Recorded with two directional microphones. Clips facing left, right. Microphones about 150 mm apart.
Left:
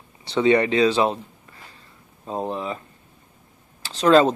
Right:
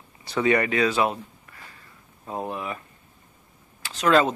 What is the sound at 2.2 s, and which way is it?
Speech, 25° left (ahead or behind).